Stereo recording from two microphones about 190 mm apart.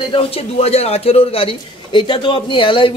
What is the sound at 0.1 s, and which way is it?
A man's voice, 30° left (ahead or behind).